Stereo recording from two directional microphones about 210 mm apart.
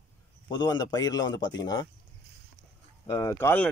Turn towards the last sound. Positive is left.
turn(degrees=10)  # may be behind; listen again after turning